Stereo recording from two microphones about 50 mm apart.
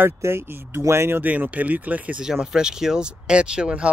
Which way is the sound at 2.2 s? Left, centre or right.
Centre.